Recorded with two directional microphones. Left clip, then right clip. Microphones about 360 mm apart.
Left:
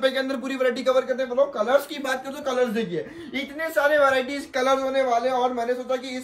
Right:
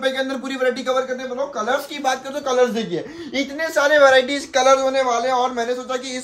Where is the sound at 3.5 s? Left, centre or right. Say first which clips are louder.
Right 5 dB; right.